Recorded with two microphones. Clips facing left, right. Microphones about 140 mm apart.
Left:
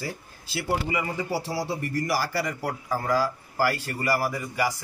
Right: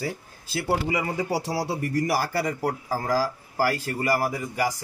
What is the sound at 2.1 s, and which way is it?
Speech, 55° right (ahead or behind).